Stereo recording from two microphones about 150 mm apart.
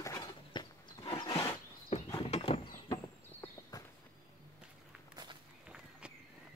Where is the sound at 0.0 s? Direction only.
25° left (ahead or behind).